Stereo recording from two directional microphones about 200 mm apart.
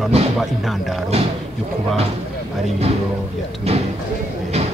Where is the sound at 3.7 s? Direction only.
30° right (ahead or behind).